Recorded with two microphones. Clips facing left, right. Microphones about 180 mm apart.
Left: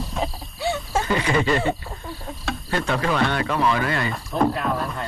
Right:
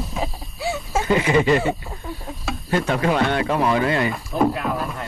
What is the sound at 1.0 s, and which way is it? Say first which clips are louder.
Speech: right 5 dB; 20° right (ahead or behind).